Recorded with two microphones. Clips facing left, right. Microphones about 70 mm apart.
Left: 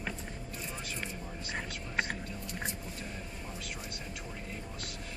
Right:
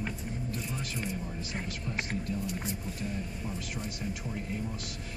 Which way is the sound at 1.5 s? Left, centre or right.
Left.